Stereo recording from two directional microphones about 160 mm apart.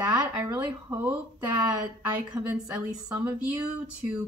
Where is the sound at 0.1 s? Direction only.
10° right (ahead or behind).